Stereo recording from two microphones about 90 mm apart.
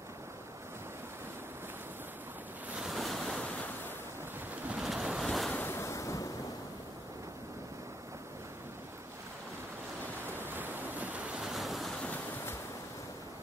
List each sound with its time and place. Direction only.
2.7 s waves: centre (ahead or behind)
4.6 s waves: 5° right (ahead or behind)
5.7 s waves: 30° left (ahead or behind)
10.3 s waves: 25° right (ahead or behind); by 12.1 s centre (ahead or behind)